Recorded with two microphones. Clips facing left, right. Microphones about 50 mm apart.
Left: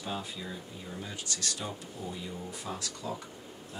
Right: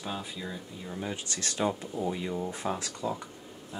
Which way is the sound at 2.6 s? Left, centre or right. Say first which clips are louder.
Right 6 dB; right.